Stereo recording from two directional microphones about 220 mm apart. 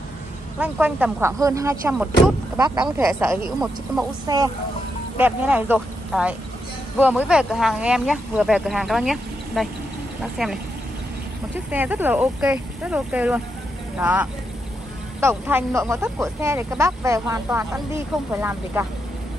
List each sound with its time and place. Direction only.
0.6 s speech: 5° right (ahead or behind)
3.4 s speech: centre (ahead or behind)
4.3 s speech: 15° right (ahead or behind)